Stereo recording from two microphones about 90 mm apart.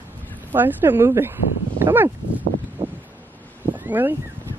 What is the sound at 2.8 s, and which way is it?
Wind, 90° right.